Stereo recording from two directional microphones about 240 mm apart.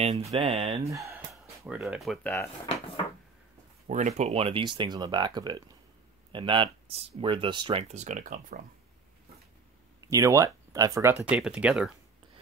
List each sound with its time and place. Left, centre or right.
0.0 s speech: right
0.8 s speech: centre
1.3 s speech: centre
3.8 s speech: right
10.0 s speech: centre